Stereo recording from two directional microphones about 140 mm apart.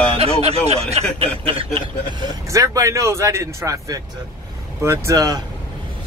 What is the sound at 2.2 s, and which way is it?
Speech, 20° right (ahead or behind).